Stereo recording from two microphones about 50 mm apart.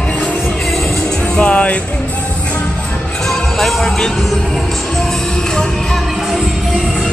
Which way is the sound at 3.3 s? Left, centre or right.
Centre.